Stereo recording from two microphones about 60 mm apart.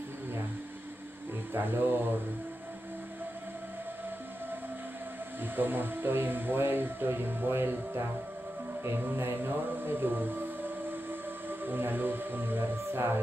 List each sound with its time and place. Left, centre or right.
1.5 s speech: right
5.6 s speech: right